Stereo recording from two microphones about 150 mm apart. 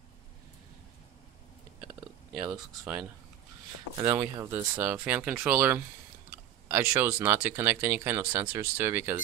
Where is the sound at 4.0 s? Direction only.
20° right (ahead or behind).